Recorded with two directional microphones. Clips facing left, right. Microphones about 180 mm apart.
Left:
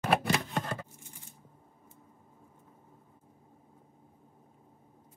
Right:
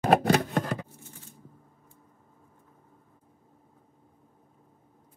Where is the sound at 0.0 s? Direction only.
45° right (ahead or behind).